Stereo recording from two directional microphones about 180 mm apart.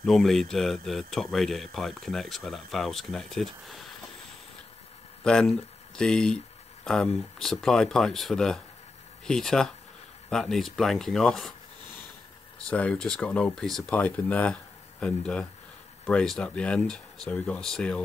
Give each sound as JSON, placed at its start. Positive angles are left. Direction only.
{"t": 0.0, "sound": "speech", "side_deg": 0}
{"t": 5.2, "sound": "speech", "side_deg": 5}
{"t": 12.6, "sound": "speech", "side_deg": 5}